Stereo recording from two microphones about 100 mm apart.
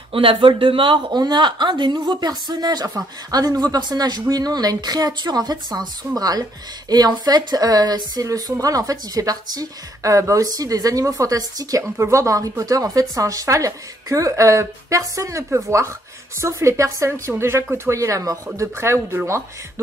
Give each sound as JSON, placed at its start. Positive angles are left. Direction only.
{"t": 0.1, "sound": "a woman's voice", "side_deg": -60}